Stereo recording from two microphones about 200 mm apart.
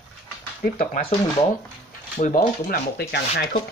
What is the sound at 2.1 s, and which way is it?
Speech, 40° left (ahead or behind).